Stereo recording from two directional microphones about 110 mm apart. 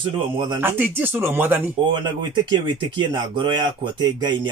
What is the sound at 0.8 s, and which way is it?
Speech, 20° right (ahead or behind).